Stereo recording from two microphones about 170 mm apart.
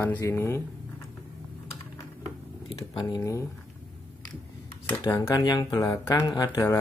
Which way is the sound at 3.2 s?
15° left (ahead or behind).